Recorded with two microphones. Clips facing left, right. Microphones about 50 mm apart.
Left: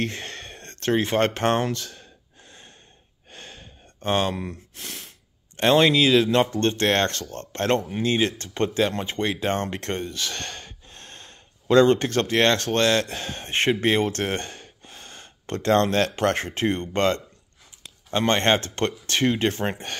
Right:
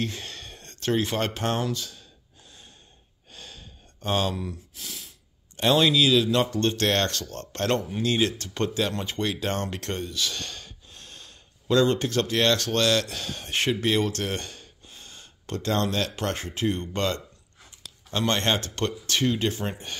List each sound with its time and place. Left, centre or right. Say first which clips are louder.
0.0 s a sound: left 3 dB; left
1.1 s speech: left 6 dB; left
3.3 s sigh: left 2 dB; left
4.5 s speech: left 2 dB; left
5.6 s speech: left 3 dB; left